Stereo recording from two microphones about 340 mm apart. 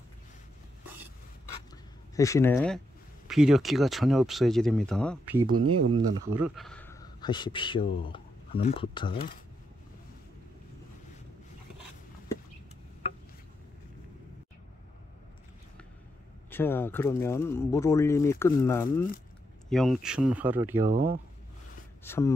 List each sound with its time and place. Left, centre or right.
2.1 s speech: centre
5.7 s speech: right
6.3 s speech: centre
16.4 s speech: centre
20.9 s speech: right
22.0 s speech: centre